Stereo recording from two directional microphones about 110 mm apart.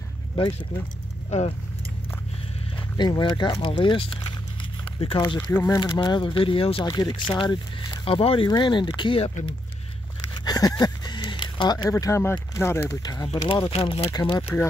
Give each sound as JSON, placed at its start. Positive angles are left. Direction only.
{"t": 3.0, "sound": "speech", "side_deg": 45}
{"t": 4.8, "sound": "a sound", "side_deg": 50}
{"t": 5.5, "sound": "speech", "side_deg": 25}
{"t": 5.8, "sound": "speech", "side_deg": 40}
{"t": 6.9, "sound": "speech", "side_deg": 40}
{"t": 8.5, "sound": "speech", "side_deg": 40}
{"t": 9.2, "sound": "speech", "side_deg": 65}
{"t": 10.3, "sound": "a sound", "side_deg": 35}
{"t": 11.9, "sound": "speech", "side_deg": 25}
{"t": 13.3, "sound": "speech", "side_deg": 55}
{"t": 14.1, "sound": "speech", "side_deg": 40}